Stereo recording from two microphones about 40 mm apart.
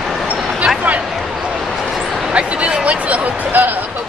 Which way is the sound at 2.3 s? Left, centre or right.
Right.